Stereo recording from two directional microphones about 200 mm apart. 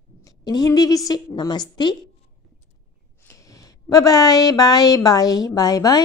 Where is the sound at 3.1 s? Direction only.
15° left (ahead or behind).